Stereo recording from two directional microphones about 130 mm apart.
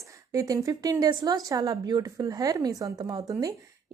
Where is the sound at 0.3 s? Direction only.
25° right (ahead or behind).